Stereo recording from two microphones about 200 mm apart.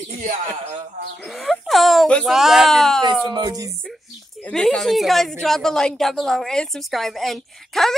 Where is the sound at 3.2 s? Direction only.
20° right (ahead or behind).